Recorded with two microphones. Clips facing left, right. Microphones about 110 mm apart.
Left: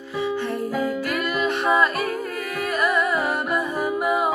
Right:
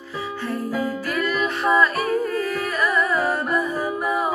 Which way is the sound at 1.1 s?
20° left (ahead or behind).